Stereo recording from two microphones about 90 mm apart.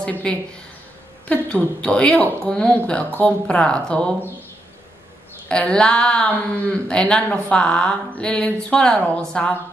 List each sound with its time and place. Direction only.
0.0 s a woman's voice: 10° left (ahead or behind)
5.5 s a woman's voice: 10° left (ahead or behind)